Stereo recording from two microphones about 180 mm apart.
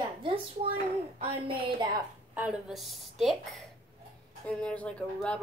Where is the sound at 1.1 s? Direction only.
30° right (ahead or behind).